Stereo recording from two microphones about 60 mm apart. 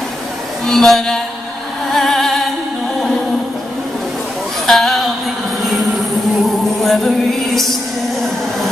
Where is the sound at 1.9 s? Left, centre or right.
Centre.